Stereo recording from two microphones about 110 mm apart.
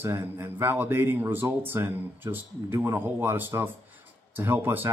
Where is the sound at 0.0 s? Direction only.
25° right (ahead or behind).